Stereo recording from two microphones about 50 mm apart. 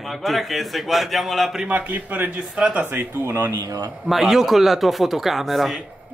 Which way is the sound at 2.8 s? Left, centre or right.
Right.